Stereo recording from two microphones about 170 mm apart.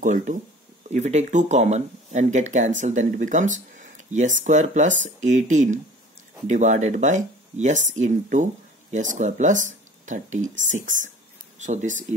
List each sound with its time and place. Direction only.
0.0 s speech: 45° right (ahead or behind)